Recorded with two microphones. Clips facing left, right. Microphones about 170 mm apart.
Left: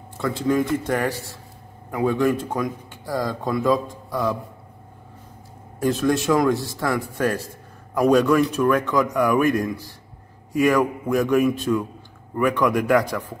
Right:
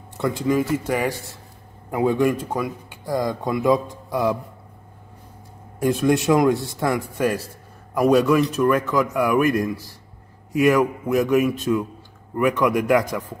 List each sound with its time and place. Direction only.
0.2 s speech: 10° right (ahead or behind)
1.9 s speech: 20° right (ahead or behind)
5.8 s speech: 10° right (ahead or behind)